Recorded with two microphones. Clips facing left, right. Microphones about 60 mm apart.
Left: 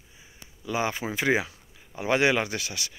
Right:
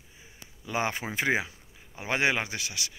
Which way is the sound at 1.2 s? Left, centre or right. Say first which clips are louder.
Left 3 dB; centre.